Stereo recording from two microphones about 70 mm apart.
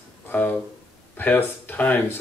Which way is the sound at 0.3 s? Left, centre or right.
Left.